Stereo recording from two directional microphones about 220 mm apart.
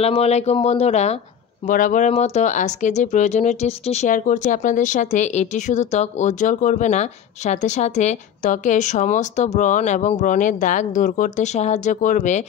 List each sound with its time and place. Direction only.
0.0 s speech: 30° left (ahead or behind)